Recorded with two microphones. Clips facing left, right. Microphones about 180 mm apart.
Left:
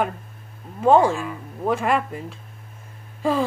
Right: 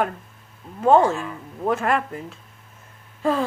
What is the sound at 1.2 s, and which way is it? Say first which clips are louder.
Speech: left 1 dB; 5° left (ahead or behind).